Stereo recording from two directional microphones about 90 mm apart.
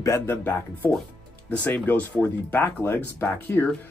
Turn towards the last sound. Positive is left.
turn(degrees=25)  # may be behind; listen again after turning